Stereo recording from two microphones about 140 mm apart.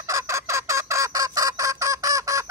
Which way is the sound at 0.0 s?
20° right (ahead or behind).